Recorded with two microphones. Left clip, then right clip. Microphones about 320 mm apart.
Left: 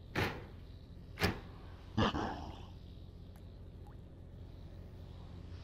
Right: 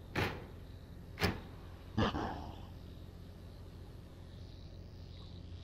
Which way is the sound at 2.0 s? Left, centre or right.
Centre.